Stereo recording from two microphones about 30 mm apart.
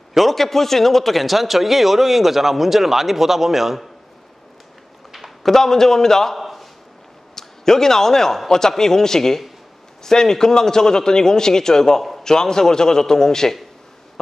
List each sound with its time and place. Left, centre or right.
0.2 s a man's voice: centre
5.4 s a man's voice: centre
6.3 s a sound: centre
7.3 s a man's voice: centre